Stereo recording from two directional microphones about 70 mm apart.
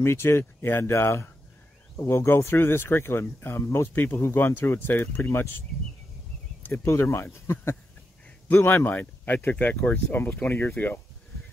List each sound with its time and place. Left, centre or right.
0.0 s speech: left
6.7 s speech: left